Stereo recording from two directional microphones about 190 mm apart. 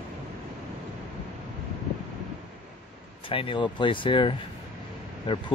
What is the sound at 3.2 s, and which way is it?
Speech, 30° left (ahead or behind).